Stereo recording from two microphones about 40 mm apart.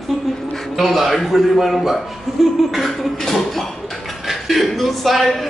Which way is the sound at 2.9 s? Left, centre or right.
Centre.